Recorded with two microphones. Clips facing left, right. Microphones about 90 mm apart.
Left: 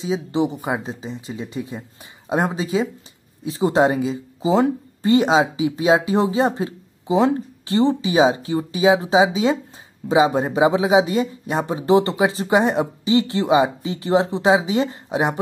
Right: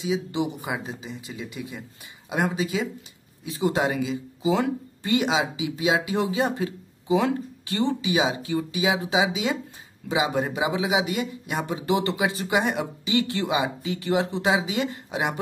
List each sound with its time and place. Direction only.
0.0 s a man's voice: 30° left (ahead or behind)